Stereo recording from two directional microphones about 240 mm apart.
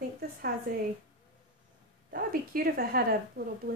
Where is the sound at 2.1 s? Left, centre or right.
Right.